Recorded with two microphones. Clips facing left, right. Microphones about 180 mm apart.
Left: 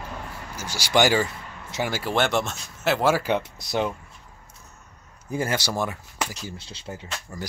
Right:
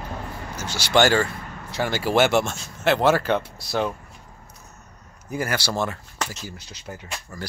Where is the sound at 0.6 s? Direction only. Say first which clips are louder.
Right 2 dB; 10° left (ahead or behind).